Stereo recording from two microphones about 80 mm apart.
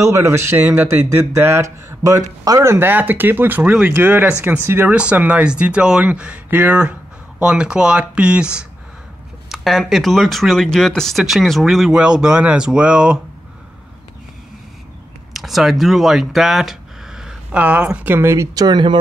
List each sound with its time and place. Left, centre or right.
0.0 s speech: right
2.0 s speech: right
2.6 s speech: right
4.9 s speech: centre
9.5 s speech: centre
15.3 s a sound: centre
17.6 s speech: centre
18.5 s speech: right